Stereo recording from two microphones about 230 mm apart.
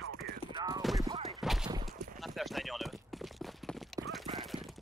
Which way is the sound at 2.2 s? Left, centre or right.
Centre.